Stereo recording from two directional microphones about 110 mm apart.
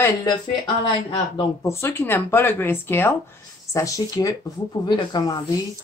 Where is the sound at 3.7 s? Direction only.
30° left (ahead or behind).